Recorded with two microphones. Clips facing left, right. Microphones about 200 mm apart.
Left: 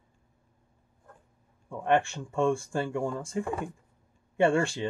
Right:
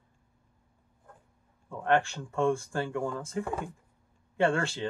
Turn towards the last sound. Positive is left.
turn(degrees=15)  # may be behind; listen again after turning